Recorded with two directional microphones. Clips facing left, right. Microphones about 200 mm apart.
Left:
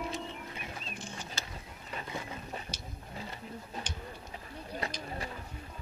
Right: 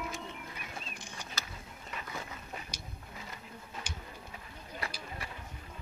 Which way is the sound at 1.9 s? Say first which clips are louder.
Left 3 dB; 30° left (ahead or behind).